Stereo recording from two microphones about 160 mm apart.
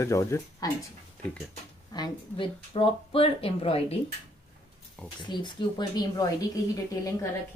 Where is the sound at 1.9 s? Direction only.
30° left (ahead or behind).